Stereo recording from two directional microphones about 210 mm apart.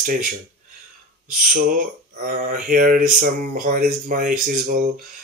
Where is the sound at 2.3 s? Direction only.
40° right (ahead or behind).